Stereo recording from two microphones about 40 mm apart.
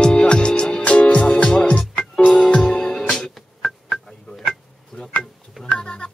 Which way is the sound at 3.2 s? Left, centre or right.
Centre.